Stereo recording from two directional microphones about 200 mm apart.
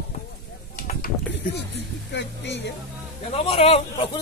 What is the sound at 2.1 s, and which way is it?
Speech, 60° left (ahead or behind).